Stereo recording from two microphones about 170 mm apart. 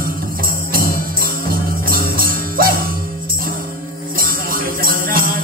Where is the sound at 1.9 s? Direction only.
60° right (ahead or behind).